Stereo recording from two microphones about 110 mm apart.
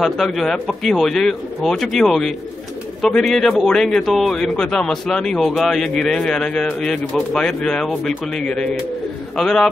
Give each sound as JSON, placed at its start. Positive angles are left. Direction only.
{"t": 0.0, "sound": "a man's voice", "side_deg": 0}